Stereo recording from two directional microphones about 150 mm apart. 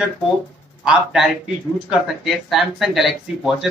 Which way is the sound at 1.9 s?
Centre (ahead or behind).